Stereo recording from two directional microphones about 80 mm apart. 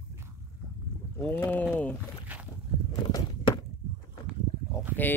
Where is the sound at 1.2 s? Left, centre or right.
Left.